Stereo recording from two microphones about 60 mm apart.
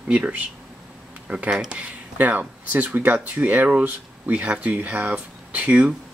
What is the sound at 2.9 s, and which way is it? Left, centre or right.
Speech, right.